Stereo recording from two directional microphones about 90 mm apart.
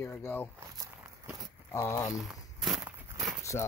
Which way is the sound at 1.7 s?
30° left (ahead or behind).